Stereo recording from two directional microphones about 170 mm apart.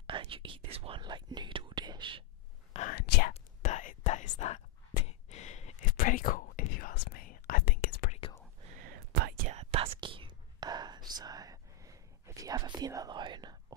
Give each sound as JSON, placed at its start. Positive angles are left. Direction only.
{"t": 0.0, "sound": "speech", "side_deg": -30}
{"t": 2.7, "sound": "speech", "side_deg": 45}
{"t": 3.0, "sound": "speech", "side_deg": 65}
{"t": 3.6, "sound": "whispering", "side_deg": 45}
{"t": 5.9, "sound": "whispering", "side_deg": 50}
{"t": 8.7, "sound": "a sound", "side_deg": -60}
{"t": 9.5, "sound": "whispering", "side_deg": -35}